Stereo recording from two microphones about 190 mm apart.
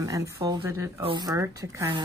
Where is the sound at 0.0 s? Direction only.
15° right (ahead or behind).